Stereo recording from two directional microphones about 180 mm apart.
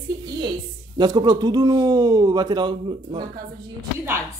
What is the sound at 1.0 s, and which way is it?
Speech, 20° right (ahead or behind).